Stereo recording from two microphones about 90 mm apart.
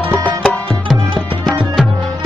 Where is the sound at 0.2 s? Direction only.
20° left (ahead or behind).